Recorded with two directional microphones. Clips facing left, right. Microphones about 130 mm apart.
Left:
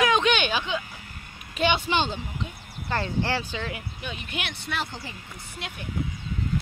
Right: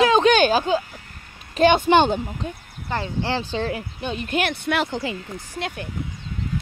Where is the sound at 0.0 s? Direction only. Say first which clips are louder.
Right 7 dB; 35° right (ahead or behind).